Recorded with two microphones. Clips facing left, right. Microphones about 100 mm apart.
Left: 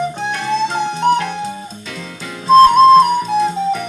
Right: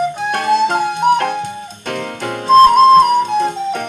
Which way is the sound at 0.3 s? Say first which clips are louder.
Right 6 dB; 55° right (ahead or behind).